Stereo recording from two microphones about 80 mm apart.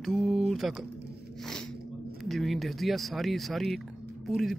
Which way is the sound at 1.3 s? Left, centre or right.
Centre.